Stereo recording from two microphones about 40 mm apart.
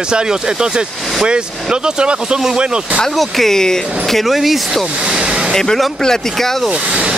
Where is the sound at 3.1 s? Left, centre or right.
Centre.